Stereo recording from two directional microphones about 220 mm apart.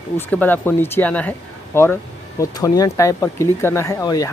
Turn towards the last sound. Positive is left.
turn(degrees=15)  # may be behind; listen again after turning